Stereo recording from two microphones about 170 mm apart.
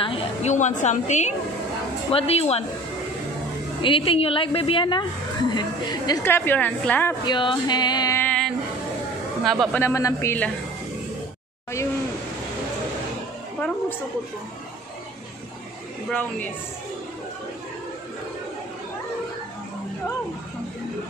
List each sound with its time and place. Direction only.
0.0 s a woman's voice: 35° left (ahead or behind)
3.8 s a woman's voice: 30° left (ahead or behind)
4.6 s a sound: 30° left (ahead or behind)
6.2 s a woman's voice: 10° left (ahead or behind)
7.2 s a sound: 25° left (ahead or behind)
8.2 s a sound: 5° left (ahead or behind)
9.4 s speech: centre (ahead or behind)
9.8 s a woman's voice: 15° left (ahead or behind)
16.1 s a woman's voice: 10° left (ahead or behind)